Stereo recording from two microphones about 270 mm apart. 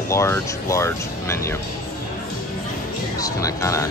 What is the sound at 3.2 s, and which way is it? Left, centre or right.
Speech, centre.